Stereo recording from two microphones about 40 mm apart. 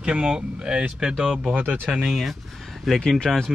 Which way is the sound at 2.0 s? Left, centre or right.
Centre.